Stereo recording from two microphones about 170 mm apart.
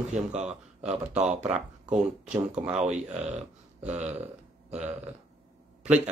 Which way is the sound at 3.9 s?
40° right (ahead or behind).